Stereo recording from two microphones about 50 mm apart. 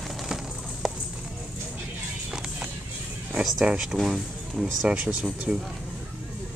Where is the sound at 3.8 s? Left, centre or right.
Centre.